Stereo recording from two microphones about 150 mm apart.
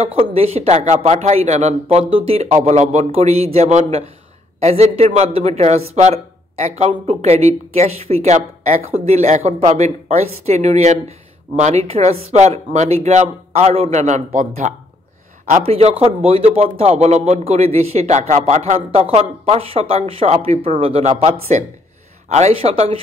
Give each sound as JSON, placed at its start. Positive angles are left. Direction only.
{"t": 0.0, "sound": "speech", "side_deg": -40}
{"t": 15.6, "sound": "speech", "side_deg": -40}